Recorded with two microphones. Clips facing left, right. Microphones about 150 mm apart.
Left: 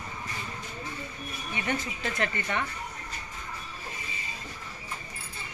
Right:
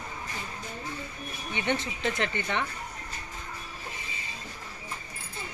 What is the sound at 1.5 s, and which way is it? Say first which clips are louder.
Speech: right 2 dB; 25° right (ahead or behind).